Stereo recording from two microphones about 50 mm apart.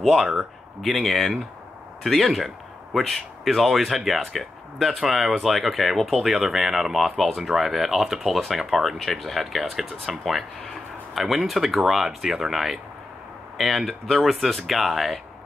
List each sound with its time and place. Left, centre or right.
0.0 s speech: centre